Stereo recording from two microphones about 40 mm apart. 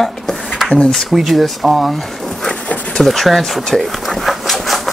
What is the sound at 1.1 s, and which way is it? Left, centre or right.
Speech, centre.